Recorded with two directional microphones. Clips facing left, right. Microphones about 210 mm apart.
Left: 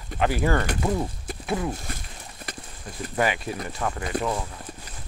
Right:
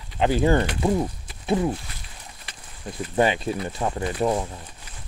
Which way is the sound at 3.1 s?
25° right (ahead or behind).